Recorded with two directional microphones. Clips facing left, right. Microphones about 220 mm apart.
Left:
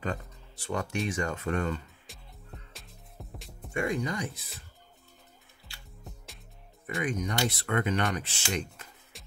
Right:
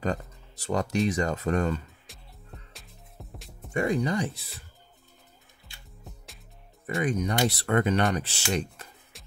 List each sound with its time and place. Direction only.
0.0 s speech: 40° right (ahead or behind)
2.1 s music: centre (ahead or behind)
3.7 s speech: 35° right (ahead or behind)
6.0 s music: centre (ahead or behind)
7.0 s speech: 30° right (ahead or behind)
9.1 s music: centre (ahead or behind)